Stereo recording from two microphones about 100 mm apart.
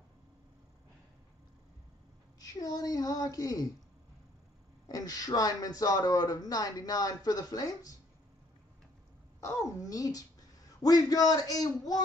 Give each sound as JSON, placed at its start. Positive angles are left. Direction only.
{"t": 2.4, "sound": "child singing", "side_deg": 40}
{"t": 4.8, "sound": "a man's voice", "side_deg": 40}
{"t": 9.4, "sound": "a man's voice", "side_deg": 30}